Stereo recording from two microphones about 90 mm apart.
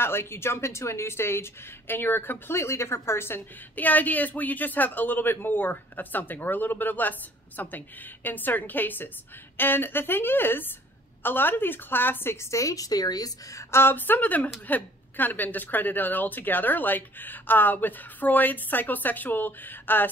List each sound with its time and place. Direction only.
0.0 s speech: 25° left (ahead or behind)